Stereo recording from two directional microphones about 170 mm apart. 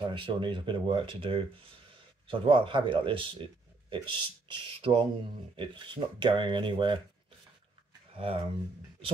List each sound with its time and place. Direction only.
0.0 s a man's voice: 30° right (ahead or behind)
8.2 s a man's voice: 35° right (ahead or behind)